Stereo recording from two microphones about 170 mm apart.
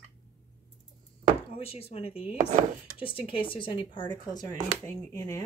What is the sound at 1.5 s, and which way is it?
Speech, 35° left (ahead or behind).